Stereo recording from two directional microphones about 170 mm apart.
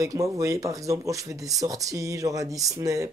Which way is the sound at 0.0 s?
20° right (ahead or behind).